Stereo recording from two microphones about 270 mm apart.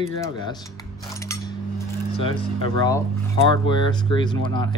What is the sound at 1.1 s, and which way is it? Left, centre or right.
Cutlery, centre.